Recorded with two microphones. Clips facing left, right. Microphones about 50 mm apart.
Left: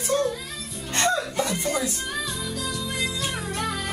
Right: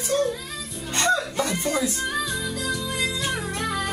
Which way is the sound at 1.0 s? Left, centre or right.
Right.